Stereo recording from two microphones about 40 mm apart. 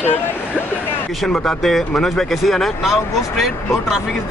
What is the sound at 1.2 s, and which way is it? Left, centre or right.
Speech, centre.